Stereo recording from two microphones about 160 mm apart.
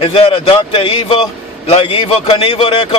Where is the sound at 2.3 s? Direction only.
35° left (ahead or behind).